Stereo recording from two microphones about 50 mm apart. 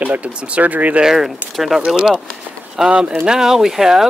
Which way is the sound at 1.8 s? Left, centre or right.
Centre.